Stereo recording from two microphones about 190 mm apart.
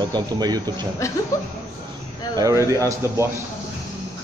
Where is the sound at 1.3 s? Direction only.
15° left (ahead or behind).